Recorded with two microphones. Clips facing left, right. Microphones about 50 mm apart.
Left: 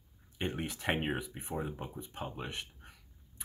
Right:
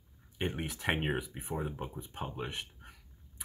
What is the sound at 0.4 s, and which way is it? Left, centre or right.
Speech, centre.